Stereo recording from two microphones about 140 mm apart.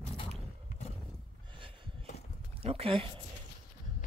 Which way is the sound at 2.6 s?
45° right (ahead or behind).